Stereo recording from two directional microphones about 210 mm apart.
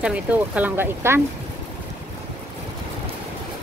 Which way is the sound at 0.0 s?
5° right (ahead or behind).